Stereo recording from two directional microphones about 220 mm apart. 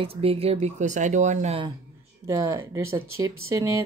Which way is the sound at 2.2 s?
15° right (ahead or behind).